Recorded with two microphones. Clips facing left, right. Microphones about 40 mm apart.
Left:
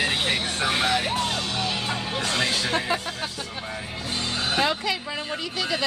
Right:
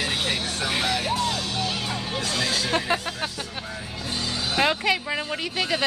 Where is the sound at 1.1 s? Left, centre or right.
Left.